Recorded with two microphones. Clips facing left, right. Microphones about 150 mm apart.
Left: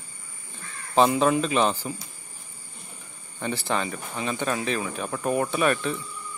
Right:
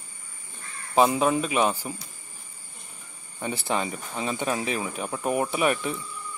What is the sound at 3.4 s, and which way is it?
Speech, 20° right (ahead or behind).